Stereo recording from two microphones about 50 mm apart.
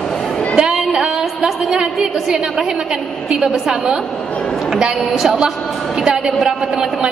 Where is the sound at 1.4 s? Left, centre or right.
Centre.